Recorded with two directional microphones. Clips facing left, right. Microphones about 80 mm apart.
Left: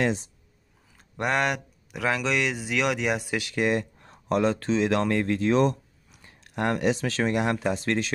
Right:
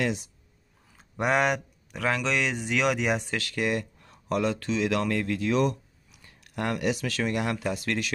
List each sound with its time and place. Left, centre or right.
0.0 s speech: left
0.9 s speech: centre
3.3 s speech: left